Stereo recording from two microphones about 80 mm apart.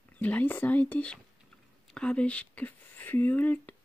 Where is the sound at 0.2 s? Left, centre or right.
Centre.